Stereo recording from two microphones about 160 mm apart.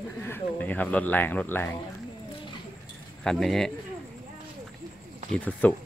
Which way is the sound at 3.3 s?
Centre (ahead or behind).